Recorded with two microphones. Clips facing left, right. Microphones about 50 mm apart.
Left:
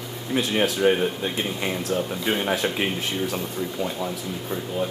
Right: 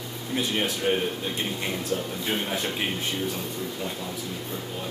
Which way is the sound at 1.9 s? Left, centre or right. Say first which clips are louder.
Left 4 dB; left.